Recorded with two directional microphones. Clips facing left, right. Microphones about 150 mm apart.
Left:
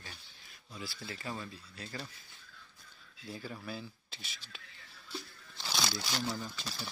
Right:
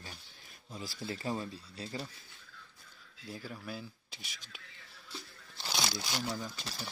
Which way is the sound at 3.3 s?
Centre (ahead or behind).